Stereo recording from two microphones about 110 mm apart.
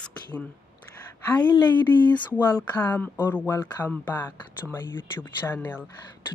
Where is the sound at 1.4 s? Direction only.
45° left (ahead or behind).